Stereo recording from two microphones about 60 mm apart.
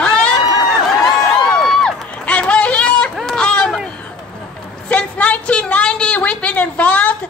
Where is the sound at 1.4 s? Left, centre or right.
Centre.